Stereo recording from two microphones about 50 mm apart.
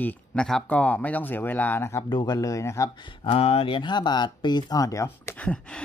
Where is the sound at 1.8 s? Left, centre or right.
Left.